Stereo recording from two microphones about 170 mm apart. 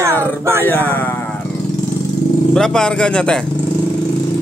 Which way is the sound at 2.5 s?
5° left (ahead or behind).